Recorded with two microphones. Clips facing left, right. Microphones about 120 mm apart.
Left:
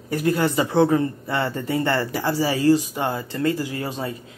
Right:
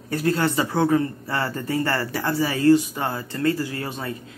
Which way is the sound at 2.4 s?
30° left (ahead or behind).